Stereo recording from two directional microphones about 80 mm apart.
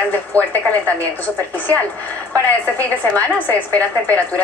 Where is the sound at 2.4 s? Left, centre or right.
Centre.